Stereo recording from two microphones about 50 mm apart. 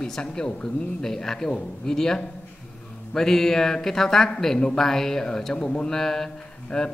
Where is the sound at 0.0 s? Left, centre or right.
Centre.